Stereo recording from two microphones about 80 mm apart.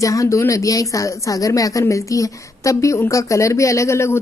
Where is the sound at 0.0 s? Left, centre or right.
Left.